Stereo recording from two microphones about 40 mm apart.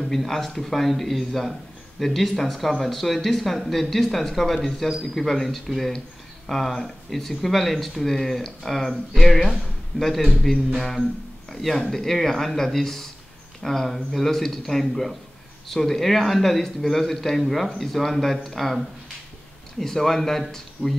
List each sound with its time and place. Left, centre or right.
0.0 s speech: centre
20.8 s speech: left